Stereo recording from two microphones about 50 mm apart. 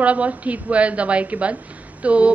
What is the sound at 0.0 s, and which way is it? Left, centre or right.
A woman's voice, right.